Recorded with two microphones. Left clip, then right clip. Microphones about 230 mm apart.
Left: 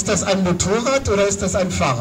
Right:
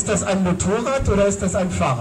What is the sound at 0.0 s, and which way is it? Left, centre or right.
A man's voice, left.